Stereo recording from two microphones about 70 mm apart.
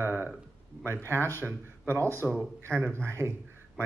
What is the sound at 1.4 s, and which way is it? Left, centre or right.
A man's voice, right.